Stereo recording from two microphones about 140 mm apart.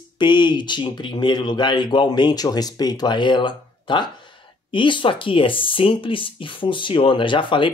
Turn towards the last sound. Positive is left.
turn(degrees=35)  # may be behind; listen again after turning